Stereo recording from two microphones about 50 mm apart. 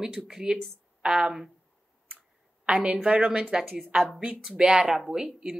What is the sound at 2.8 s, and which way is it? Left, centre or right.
Speech, right.